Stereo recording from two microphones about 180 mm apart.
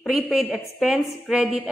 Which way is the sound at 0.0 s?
Centre (ahead or behind).